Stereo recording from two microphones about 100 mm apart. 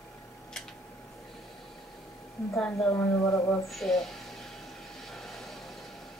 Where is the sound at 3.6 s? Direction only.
5° left (ahead or behind).